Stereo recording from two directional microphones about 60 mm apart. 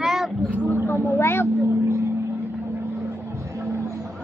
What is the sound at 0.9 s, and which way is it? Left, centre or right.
Speech, left.